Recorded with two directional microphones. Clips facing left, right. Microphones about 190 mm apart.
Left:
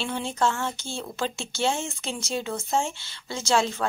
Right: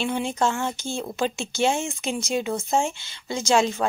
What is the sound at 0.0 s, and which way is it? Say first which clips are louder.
A woman's voice: right 2 dB; 15° right (ahead or behind).